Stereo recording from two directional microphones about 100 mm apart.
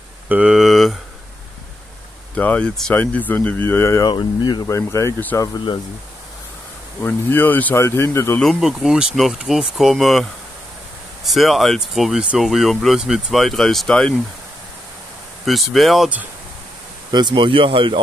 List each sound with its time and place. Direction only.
0.3 s speech: 10° right (ahead or behind)
2.3 s speech: 15° left (ahead or behind)
4.0 s speech: 50° left (ahead or behind)
4.6 s speech: 30° left (ahead or behind)
7.0 s speech: 20° left (ahead or behind)
8.4 s speech: centre (ahead or behind)
11.2 s speech: centre (ahead or behind)
15.4 s speech: centre (ahead or behind)
17.1 s speech: 50° right (ahead or behind)